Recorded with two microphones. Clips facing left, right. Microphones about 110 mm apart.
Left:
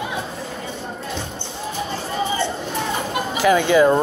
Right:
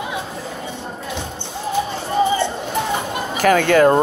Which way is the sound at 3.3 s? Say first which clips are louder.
Right 1 dB; 50° right (ahead or behind).